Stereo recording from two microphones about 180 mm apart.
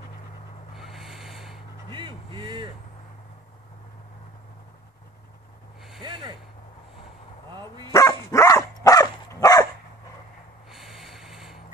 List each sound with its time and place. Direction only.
0.7 s snort: centre (ahead or behind)
1.9 s vehicle: 25° right (ahead or behind)
7.5 s dog: 25° right (ahead or behind)
7.9 s dog: 15° left (ahead or behind)
10.7 s snort: centre (ahead or behind)